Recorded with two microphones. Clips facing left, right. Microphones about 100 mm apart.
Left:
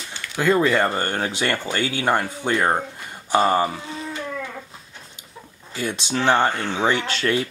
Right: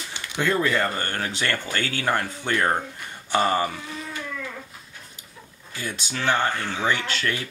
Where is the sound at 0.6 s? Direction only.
20° left (ahead or behind).